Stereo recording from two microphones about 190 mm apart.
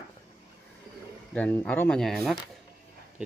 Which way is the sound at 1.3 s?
10° left (ahead or behind).